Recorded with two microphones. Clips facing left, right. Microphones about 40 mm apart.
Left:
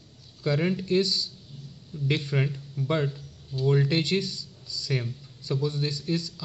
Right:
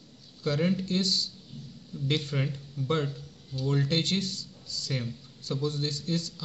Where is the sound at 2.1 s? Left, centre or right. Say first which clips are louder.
Left 3 dB; left.